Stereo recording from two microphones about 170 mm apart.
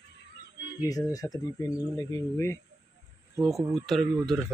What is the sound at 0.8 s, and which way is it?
Speech, 20° left (ahead or behind).